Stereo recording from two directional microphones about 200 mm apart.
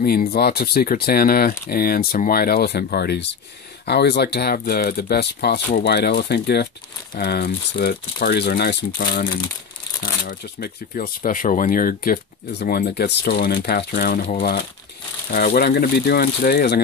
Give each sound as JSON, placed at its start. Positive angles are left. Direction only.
{"t": 0.3, "sound": "speech", "side_deg": 50}
{"t": 10.2, "sound": "speech", "side_deg": 45}